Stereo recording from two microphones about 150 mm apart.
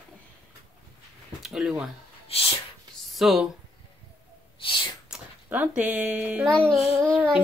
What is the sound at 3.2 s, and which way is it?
Speech, centre (ahead or behind).